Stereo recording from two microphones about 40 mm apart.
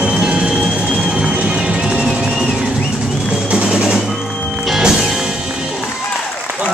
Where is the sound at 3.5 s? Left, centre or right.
Right.